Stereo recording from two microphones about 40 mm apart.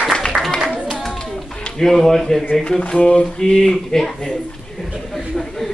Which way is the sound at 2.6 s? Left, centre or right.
Left.